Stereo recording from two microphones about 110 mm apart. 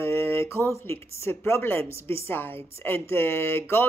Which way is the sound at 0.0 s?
20° left (ahead or behind).